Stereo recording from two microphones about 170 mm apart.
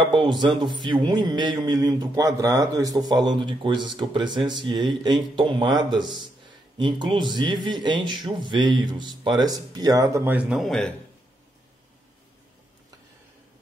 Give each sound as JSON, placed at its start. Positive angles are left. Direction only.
{"t": 0.0, "sound": "speech", "side_deg": -30}